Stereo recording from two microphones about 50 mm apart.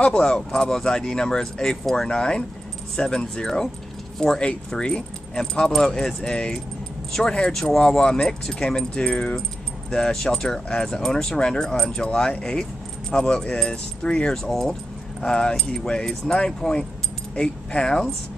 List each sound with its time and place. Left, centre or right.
0.0 s speech: left